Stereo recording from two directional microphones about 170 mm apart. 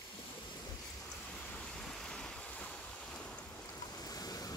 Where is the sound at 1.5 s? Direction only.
5° left (ahead or behind).